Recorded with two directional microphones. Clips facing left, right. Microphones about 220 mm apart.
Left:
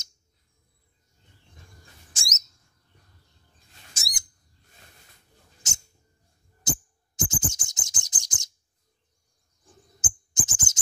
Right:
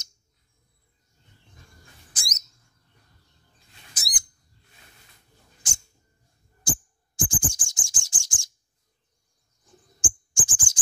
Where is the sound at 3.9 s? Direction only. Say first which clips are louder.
Right 1 dB; 25° left (ahead or behind).